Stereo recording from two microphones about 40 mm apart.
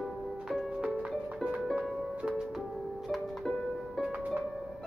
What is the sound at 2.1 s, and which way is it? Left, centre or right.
Music, right.